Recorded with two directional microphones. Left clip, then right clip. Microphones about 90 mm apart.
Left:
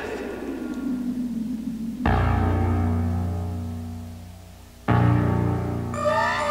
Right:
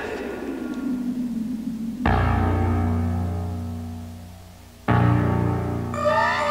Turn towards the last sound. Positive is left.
turn(degrees=35)  # may be behind; listen again after turning